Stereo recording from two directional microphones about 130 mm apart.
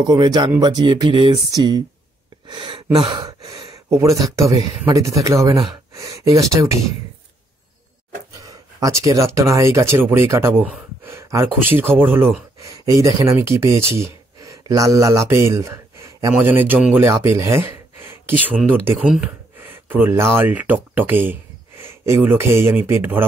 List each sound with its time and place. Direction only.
0.0 s speech: 30° right (ahead or behind)
2.4 s gasp: 35° right (ahead or behind)
3.9 s speech: 25° right (ahead or behind)
8.5 s speech: 25° right (ahead or behind)
16.3 s speech: 15° right (ahead or behind)
18.9 s speech: 10° right (ahead or behind)